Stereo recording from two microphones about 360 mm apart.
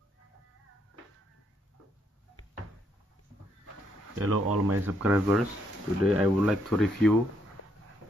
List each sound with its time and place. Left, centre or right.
4.1 s speech: right
4.8 s speech: centre